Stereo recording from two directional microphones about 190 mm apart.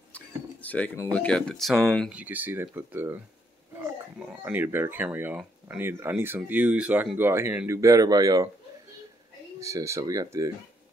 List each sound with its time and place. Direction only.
0.1 s a sound: 10° left (ahead or behind)
1.1 s speech: 5° left (ahead or behind)
2.1 s speech: 10° right (ahead or behind)
9.6 s speech: 15° right (ahead or behind)